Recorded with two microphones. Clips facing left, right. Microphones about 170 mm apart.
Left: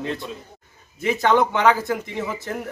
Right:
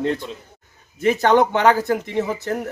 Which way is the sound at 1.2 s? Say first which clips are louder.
Right 2 dB; 40° right (ahead or behind).